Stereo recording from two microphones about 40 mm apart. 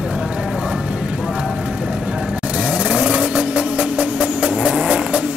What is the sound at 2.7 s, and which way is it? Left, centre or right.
Vehicle, right.